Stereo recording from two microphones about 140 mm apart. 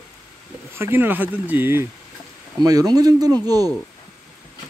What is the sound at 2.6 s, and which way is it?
Speech, 25° right (ahead or behind).